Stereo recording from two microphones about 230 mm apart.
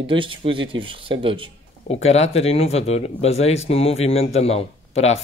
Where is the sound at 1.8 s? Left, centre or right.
Left.